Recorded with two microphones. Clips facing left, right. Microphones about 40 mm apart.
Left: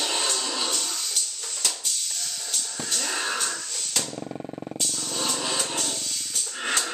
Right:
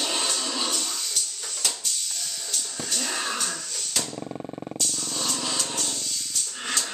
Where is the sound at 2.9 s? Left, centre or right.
Centre.